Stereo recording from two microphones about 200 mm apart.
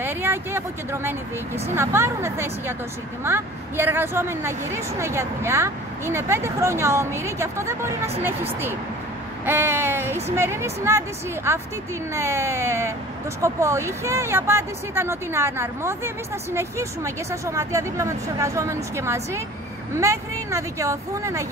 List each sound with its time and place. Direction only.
0.0 s speech: 10° right (ahead or behind)